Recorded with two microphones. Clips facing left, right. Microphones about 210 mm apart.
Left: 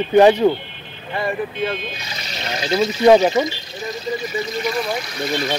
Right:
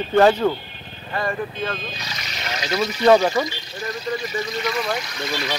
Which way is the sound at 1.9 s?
30° left (ahead or behind).